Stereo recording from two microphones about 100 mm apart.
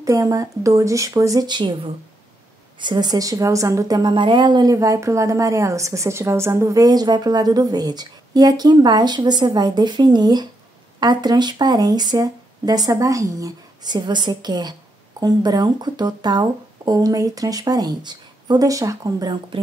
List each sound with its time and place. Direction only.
0.0 s a woman's voice: 35° right (ahead or behind); by 1.8 s 50° right (ahead or behind)
2.8 s speech: 45° right (ahead or behind)
4.7 s a woman's voice: 35° right (ahead or behind)
19.5 s speech: 60° right (ahead or behind)